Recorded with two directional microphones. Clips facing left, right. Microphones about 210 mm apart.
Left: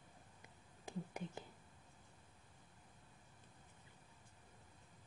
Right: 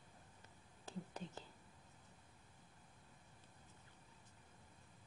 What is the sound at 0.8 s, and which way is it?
Whispering, 10° left (ahead or behind).